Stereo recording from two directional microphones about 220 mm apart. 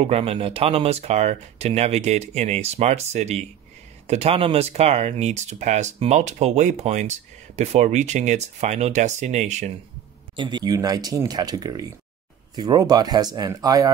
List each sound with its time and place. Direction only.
0.0 s speech: 25° right (ahead or behind)
10.3 s speech: 20° right (ahead or behind)